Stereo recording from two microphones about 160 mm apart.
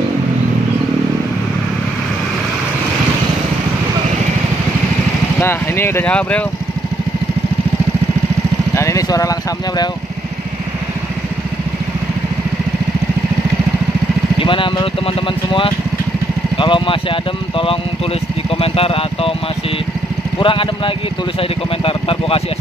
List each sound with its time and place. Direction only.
5.4 s speech: 15° left (ahead or behind)
8.7 s speech: 20° left (ahead or behind)
14.4 s speech: 35° left (ahead or behind)
16.5 s speech: 30° left (ahead or behind)
20.3 s speech: 30° left (ahead or behind)